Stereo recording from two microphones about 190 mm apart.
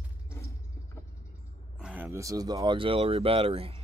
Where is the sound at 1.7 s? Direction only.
5° right (ahead or behind).